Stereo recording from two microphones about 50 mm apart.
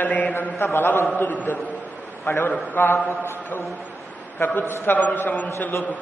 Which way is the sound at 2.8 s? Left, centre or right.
Left.